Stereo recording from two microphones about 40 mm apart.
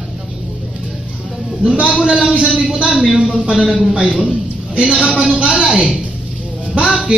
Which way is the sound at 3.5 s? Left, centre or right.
Left.